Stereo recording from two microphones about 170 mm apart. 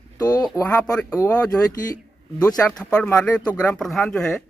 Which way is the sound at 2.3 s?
20° left (ahead or behind).